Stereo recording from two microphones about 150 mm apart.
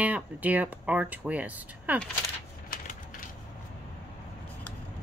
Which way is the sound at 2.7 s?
65° left (ahead or behind).